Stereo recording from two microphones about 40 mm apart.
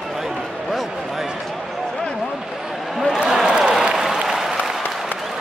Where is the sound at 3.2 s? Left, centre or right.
Centre.